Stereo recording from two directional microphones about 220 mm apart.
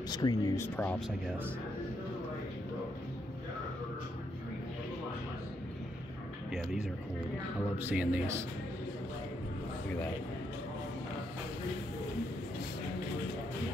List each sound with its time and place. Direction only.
0.1 s speech: 15° left (ahead or behind)
6.5 s speech: centre (ahead or behind)